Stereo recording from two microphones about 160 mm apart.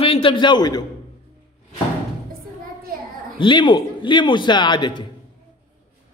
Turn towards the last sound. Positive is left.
turn(degrees=30)  # may be behind; listen again after turning